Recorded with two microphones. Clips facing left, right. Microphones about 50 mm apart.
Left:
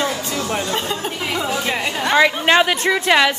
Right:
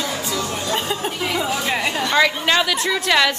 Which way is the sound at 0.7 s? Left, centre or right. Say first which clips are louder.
Even; centre.